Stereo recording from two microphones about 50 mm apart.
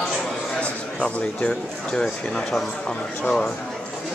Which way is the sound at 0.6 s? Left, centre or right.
Left.